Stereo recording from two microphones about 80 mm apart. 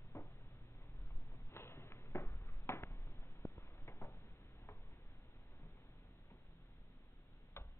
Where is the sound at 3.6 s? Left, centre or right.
Left.